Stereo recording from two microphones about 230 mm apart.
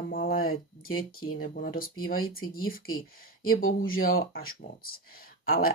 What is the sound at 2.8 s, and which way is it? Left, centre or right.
Speech, left.